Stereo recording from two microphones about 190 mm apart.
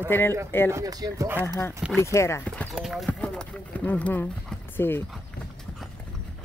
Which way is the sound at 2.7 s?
Centre (ahead or behind).